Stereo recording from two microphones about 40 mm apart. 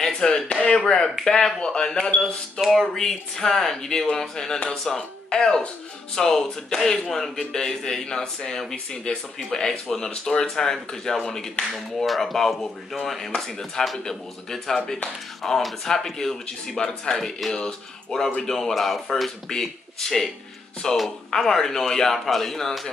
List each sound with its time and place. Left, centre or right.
0.0 s chop: centre
0.5 s speech: left
0.7 s speech: centre